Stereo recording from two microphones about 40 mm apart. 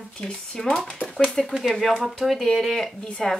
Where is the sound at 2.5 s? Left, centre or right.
Centre.